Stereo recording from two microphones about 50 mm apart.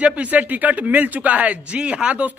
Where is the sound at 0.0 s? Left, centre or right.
Right.